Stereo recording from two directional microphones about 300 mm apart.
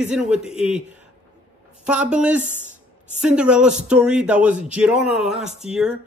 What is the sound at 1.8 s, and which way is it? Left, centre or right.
Speech, centre.